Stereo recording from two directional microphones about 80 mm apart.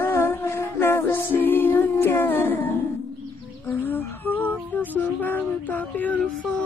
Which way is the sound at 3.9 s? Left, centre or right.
Left.